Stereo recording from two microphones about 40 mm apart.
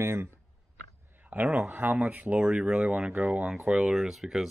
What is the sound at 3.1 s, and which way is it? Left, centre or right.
Speech, right.